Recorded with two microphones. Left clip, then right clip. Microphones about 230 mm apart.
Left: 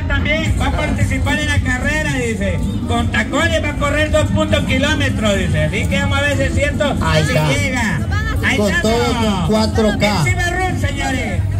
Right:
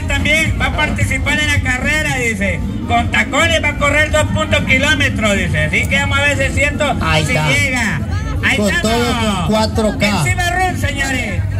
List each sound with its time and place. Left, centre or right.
0.1 s vehicle: right
1.3 s a man's voice: right